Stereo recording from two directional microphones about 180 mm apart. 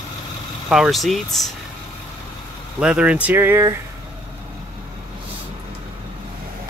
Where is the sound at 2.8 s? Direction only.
5° right (ahead or behind).